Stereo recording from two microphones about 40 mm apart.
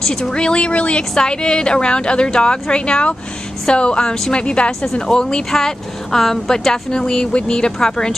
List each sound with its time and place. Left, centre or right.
0.0 s a woman's voice: centre; by 1.0 s left
1.1 s a woman's voice: centre
5.6 s speech: centre